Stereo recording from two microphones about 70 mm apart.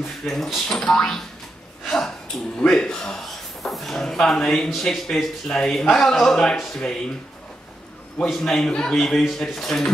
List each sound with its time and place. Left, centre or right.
0.3 s a man's voice: centre
8.3 s a man's voice: centre